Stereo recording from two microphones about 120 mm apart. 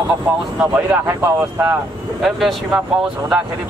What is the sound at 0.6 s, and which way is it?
Speech, 10° right (ahead or behind).